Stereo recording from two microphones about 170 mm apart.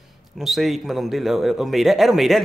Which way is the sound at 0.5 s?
Centre (ahead or behind).